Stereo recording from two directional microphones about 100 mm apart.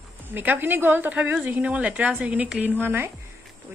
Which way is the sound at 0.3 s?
20° right (ahead or behind).